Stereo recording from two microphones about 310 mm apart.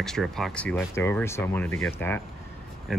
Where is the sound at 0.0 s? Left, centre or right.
Centre.